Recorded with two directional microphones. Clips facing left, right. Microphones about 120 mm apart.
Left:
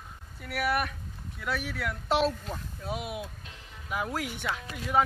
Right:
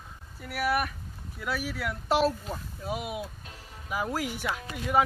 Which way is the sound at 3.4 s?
40° right (ahead or behind).